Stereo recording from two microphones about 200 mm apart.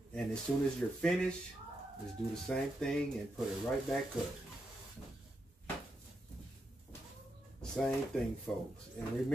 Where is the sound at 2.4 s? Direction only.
5° left (ahead or behind).